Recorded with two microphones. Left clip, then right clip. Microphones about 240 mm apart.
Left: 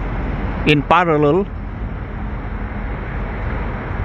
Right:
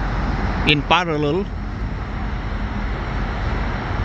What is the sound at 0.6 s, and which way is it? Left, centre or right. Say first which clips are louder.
Speech: left 4 dB; centre.